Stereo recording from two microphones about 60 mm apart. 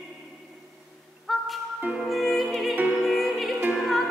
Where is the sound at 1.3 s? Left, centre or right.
Centre.